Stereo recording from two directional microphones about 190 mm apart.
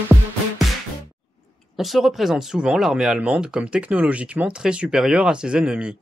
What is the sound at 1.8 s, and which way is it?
Speech, centre (ahead or behind).